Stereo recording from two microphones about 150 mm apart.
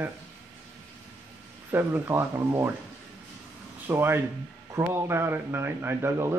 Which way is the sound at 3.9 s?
15° right (ahead or behind).